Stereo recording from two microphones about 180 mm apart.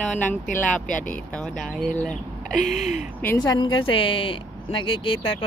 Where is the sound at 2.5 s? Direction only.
45° left (ahead or behind).